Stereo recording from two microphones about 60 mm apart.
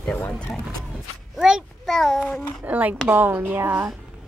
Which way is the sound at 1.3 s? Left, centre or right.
Centre.